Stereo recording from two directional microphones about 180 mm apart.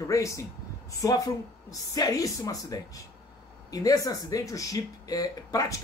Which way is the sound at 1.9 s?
20° left (ahead or behind).